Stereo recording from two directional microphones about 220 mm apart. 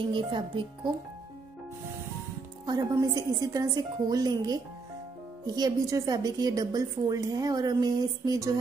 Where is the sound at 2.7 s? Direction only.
15° right (ahead or behind).